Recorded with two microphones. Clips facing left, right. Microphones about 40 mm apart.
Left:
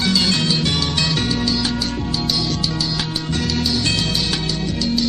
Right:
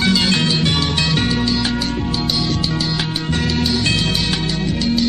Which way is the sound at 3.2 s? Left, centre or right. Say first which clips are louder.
Right 3 dB; right.